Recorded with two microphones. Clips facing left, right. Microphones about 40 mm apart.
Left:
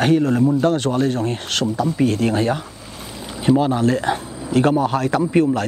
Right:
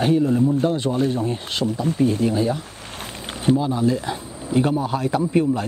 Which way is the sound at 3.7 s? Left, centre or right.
Left.